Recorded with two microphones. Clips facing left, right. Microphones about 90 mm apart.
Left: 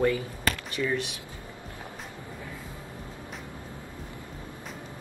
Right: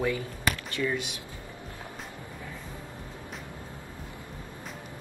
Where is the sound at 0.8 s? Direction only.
20° left (ahead or behind).